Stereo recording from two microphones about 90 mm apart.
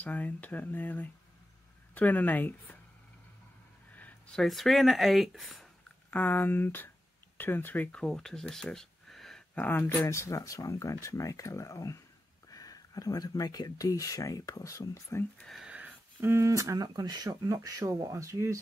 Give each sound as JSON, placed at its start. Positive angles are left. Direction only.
{"t": 0.0, "sound": "speech", "side_deg": 15}
{"t": 3.9, "sound": "a sound", "side_deg": 15}
{"t": 4.4, "sound": "speech", "side_deg": 0}
{"t": 6.0, "sound": "speech", "side_deg": 20}
{"t": 9.6, "sound": "speech", "side_deg": 20}
{"t": 10.0, "sound": "speech", "side_deg": 35}
{"t": 15.6, "sound": "a sound", "side_deg": -15}
{"t": 16.3, "sound": "speech", "side_deg": -35}
{"t": 16.7, "sound": "speech", "side_deg": -50}